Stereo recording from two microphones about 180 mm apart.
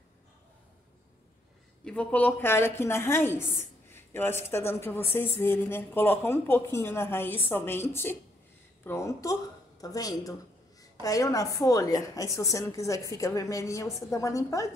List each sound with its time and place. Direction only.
1.9 s a woman's voice: 5° left (ahead or behind)